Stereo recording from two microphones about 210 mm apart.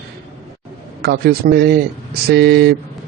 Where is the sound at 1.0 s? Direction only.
50° right (ahead or behind).